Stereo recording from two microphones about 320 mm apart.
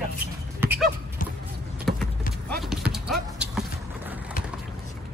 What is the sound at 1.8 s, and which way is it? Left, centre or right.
Clip-clop, centre.